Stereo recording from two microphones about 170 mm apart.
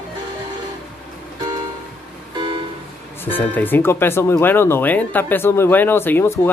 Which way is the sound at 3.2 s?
10° left (ahead or behind).